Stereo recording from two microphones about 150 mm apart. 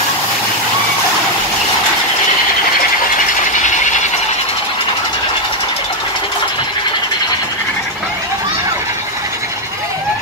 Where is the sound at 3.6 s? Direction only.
55° left (ahead or behind).